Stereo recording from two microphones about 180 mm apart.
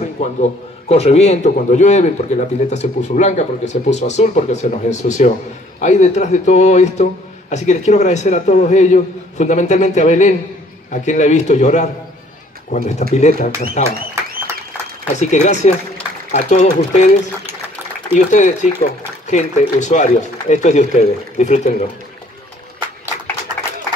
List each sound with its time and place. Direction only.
0.0 s a man's voice: 40° left (ahead or behind)
15.1 s a man's voice: 40° left (ahead or behind)
18.1 s a man's voice: 40° left (ahead or behind)